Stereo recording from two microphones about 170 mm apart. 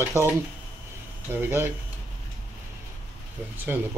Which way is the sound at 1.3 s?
15° right (ahead or behind).